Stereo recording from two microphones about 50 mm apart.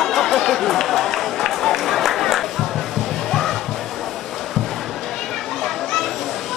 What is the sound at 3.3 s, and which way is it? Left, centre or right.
Music, centre.